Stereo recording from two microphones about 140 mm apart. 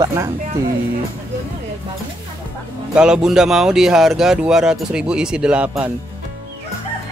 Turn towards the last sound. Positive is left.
turn(degrees=-10)  # may be behind; listen again after turning